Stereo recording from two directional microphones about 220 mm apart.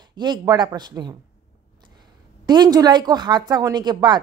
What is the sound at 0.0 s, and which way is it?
A woman's voice, 20° right (ahead or behind).